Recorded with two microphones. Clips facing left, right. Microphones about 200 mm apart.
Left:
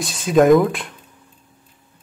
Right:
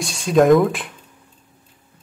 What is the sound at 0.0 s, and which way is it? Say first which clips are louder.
Speech: left 1 dB; centre (ahead or behind).